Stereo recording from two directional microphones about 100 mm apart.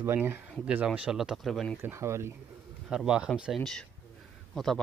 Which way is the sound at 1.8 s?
25° right (ahead or behind).